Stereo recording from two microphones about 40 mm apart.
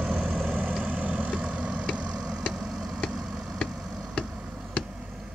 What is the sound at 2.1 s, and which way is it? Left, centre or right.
Vehicle, centre.